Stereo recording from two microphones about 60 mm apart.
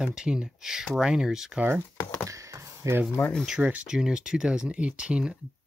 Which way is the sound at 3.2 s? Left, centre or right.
Left.